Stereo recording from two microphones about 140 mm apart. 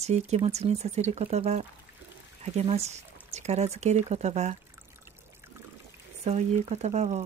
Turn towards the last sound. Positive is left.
turn(degrees=-55)  # may be behind; listen again after turning